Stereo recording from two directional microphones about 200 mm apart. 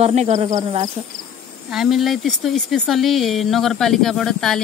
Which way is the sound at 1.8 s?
Centre (ahead or behind).